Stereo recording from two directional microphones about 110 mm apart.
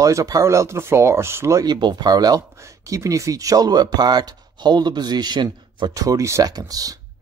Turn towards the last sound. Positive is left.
turn(degrees=-35)  # may be behind; listen again after turning